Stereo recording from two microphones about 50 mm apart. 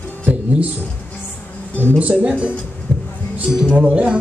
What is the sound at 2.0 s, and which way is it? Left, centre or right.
Speech, right.